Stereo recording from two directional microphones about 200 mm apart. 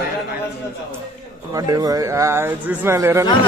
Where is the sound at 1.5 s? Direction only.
20° right (ahead or behind).